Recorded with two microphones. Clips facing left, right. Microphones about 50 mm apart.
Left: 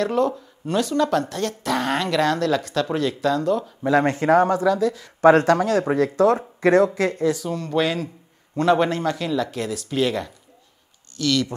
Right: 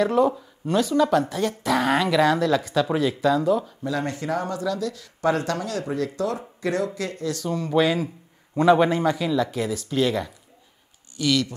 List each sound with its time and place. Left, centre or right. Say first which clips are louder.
0.0 s speech: right 1 dB; centre
3.8 s speech: left 8 dB; left
4.6 s speech: left 7 dB; left
5.2 s speech: left 9 dB; left
7.4 s speech: right 1 dB; centre